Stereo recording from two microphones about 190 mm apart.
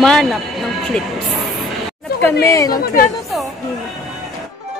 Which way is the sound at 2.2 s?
15° left (ahead or behind).